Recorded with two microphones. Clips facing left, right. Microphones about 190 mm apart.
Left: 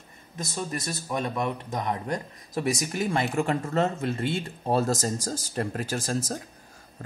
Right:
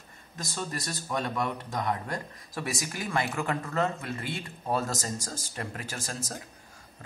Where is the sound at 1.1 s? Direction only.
20° left (ahead or behind).